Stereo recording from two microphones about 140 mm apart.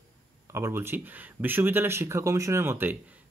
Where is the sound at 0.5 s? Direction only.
20° right (ahead or behind).